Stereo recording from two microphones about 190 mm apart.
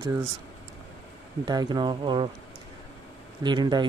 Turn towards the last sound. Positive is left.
turn(degrees=-20)  # may be behind; listen again after turning